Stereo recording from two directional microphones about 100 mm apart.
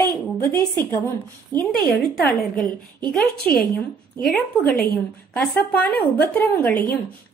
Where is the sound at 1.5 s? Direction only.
40° right (ahead or behind).